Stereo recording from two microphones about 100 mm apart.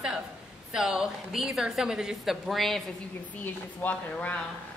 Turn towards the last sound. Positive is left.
turn(degrees=15)  # may be behind; listen again after turning